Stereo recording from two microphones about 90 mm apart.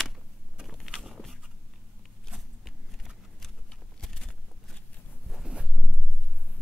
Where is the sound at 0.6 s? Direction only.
5° right (ahead or behind).